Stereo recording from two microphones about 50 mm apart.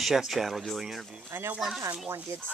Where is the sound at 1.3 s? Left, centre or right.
Right.